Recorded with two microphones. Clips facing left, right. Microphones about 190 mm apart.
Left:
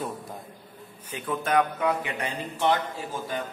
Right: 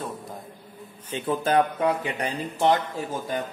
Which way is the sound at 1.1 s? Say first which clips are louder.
Right 3 dB; 30° right (ahead or behind).